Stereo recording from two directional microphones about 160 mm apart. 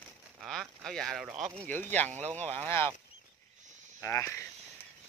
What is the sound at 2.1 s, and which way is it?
Speech, 45° right (ahead or behind).